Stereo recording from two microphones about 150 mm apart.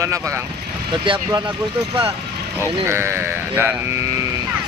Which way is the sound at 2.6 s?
15° right (ahead or behind).